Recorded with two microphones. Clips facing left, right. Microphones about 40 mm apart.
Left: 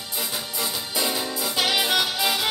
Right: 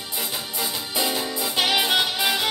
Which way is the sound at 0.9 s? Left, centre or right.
Centre.